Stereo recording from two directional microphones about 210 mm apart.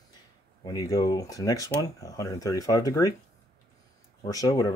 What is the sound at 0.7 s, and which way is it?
Speech, 15° left (ahead or behind).